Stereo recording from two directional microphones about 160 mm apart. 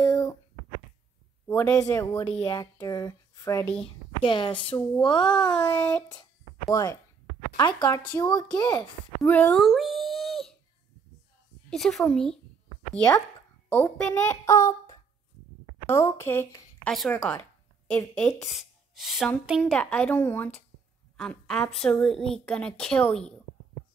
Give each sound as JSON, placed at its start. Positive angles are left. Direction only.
{"t": 0.0, "sound": "a sound", "side_deg": 20}
{"t": 1.5, "sound": "a woman's voice", "side_deg": 10}
{"t": 2.2, "sound": "speech", "side_deg": 35}
{"t": 2.5, "sound": "speech", "side_deg": 25}
{"t": 3.8, "sound": "a woman's voice", "side_deg": 30}
{"t": 5.5, "sound": "a woman's voice", "side_deg": 10}
{"t": 6.7, "sound": "speech", "side_deg": 20}
{"t": 9.2, "sound": "a woman's voice", "side_deg": 10}
{"t": 10.2, "sound": "a sound", "side_deg": 0}
{"t": 11.7, "sound": "a woman's voice", "side_deg": 0}
{"t": 19.7, "sound": "a woman's voice", "side_deg": 5}